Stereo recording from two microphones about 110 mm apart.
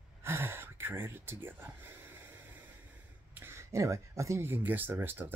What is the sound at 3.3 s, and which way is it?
Speech, 25° right (ahead or behind).